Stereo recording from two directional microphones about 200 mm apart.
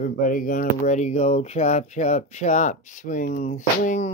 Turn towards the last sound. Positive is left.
turn(degrees=40)  # may be behind; listen again after turning